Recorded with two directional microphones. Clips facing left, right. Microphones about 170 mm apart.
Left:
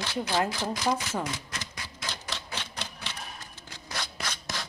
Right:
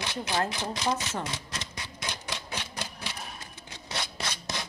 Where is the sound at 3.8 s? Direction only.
25° right (ahead or behind).